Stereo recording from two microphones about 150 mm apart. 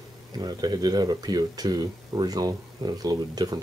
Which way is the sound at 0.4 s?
25° right (ahead or behind).